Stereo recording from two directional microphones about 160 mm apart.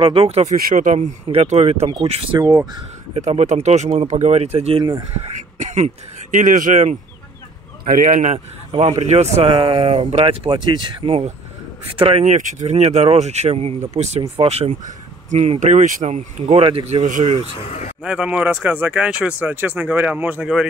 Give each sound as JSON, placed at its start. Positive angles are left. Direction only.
{"t": 0.0, "sound": "speech", "side_deg": -35}
{"t": 0.6, "sound": "speech", "side_deg": -55}
{"t": 2.3, "sound": "speech", "side_deg": -25}
{"t": 3.2, "sound": "speech", "side_deg": -45}
{"t": 5.3, "sound": "throat clearing", "side_deg": -45}
{"t": 6.3, "sound": "speech", "side_deg": -55}
{"t": 17.6, "sound": "speech", "side_deg": 45}
{"t": 18.0, "sound": "speech", "side_deg": -5}